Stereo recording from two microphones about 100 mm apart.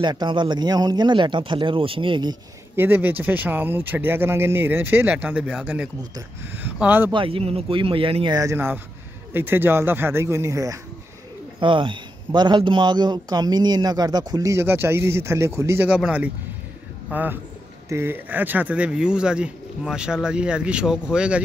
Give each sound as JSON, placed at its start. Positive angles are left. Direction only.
{"t": 0.0, "sound": "speech", "side_deg": -45}
{"t": 2.7, "sound": "speech", "side_deg": -20}
{"t": 7.1, "sound": "speech", "side_deg": -60}
{"t": 8.5, "sound": "speech", "side_deg": -20}
{"t": 11.6, "sound": "a man's voice", "side_deg": -55}
{"t": 15.9, "sound": "speech", "side_deg": -10}